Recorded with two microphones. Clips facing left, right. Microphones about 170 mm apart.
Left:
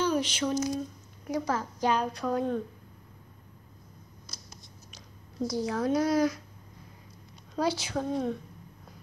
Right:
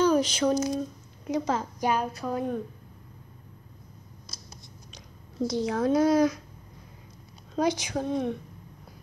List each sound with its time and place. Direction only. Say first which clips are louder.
0.0 s a sound: right 5 dB; 40° right (ahead or behind)
1.2 s a woman's voice: right 3 dB; 20° right (ahead or behind)
1.9 s a woman's voice: even; 10° right (ahead or behind)
4.9 s speech: right 3 dB; 25° right (ahead or behind)
7.5 s a woman's voice: right 3 dB; 20° right (ahead or behind)